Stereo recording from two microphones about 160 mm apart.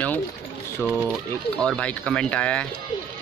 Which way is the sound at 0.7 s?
15° left (ahead or behind).